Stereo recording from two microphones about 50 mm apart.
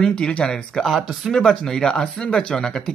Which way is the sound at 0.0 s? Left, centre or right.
Left.